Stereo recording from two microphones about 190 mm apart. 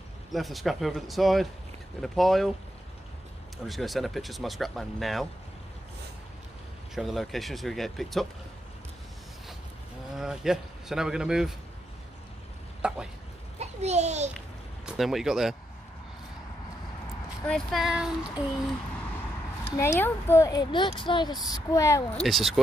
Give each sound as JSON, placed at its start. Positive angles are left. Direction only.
{"t": 0.3, "sound": "speech", "side_deg": 0}
{"t": 3.6, "sound": "speech", "side_deg": 0}
{"t": 7.0, "sound": "speech", "side_deg": 0}
{"t": 10.1, "sound": "speech", "side_deg": 0}
{"t": 12.8, "sound": "a sound", "side_deg": -5}
{"t": 13.6, "sound": "a sound", "side_deg": -35}
{"t": 14.9, "sound": "speech", "side_deg": 0}
{"t": 17.5, "sound": "speech", "side_deg": 0}
{"t": 19.8, "sound": "a woman's voice", "side_deg": 10}
{"t": 22.1, "sound": "speech", "side_deg": 0}